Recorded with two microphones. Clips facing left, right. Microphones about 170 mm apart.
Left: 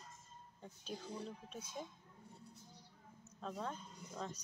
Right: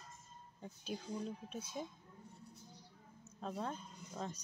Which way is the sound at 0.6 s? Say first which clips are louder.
Right 3 dB; 5° right (ahead or behind).